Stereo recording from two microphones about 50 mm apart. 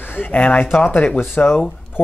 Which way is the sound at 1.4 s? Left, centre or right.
Left.